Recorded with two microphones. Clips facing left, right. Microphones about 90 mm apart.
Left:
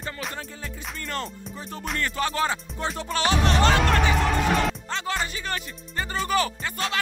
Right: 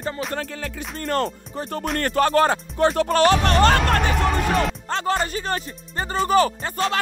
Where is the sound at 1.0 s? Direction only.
45° right (ahead or behind).